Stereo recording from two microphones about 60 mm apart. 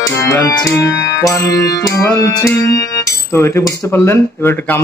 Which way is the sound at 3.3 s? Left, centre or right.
Left.